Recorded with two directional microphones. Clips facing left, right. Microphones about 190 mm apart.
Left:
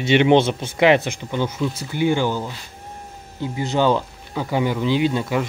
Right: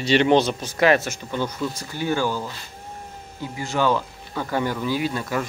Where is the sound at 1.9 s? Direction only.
20° left (ahead or behind).